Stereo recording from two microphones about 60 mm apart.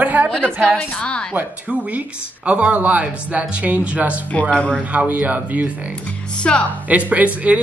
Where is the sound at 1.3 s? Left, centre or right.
Right.